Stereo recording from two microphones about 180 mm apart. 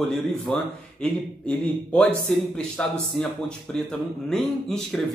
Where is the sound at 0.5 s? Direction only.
5° left (ahead or behind).